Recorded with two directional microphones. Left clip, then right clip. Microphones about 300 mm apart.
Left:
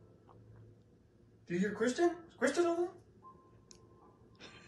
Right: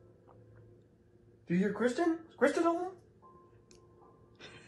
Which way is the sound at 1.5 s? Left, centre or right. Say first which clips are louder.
Right 3 dB; centre.